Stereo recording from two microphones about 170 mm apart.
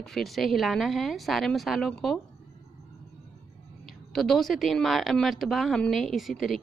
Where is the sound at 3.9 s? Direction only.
Centre (ahead or behind).